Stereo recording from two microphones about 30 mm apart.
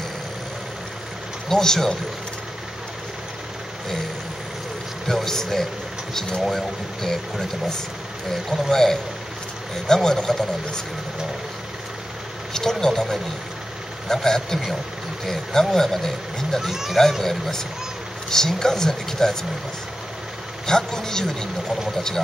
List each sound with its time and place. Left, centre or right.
1.5 s speech: centre
5.0 s speech: centre
12.5 s speech: centre
20.6 s speech: centre